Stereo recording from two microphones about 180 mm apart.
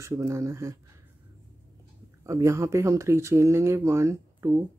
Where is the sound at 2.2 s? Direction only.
15° right (ahead or behind).